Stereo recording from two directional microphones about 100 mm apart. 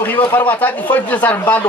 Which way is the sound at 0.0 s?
20° left (ahead or behind).